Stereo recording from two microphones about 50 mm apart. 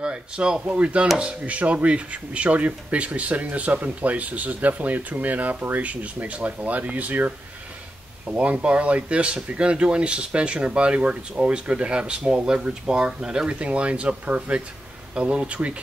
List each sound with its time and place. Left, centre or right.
0.0 s speech: centre